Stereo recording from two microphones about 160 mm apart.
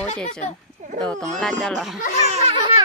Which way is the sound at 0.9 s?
5° left (ahead or behind).